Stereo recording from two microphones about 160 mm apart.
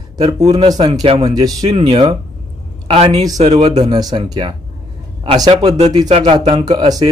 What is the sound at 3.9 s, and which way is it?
Speech, 25° right (ahead or behind).